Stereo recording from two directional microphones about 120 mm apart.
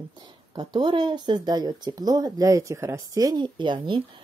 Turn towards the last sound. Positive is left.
turn(degrees=-40)  # may be behind; listen again after turning